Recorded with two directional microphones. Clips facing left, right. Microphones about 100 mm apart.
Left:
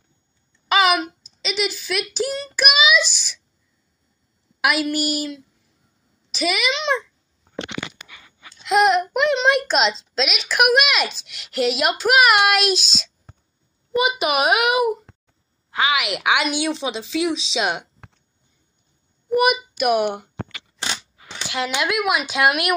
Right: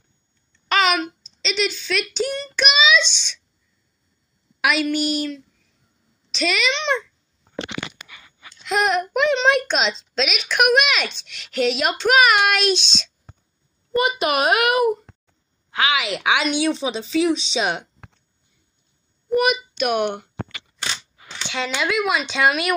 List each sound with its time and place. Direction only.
0.7 s a woman's voice: 5° left (ahead or behind)
4.6 s a woman's voice: 5° left (ahead or behind)
8.6 s a child's voice: centre (ahead or behind)
19.2 s a child's voice: 5° left (ahead or behind)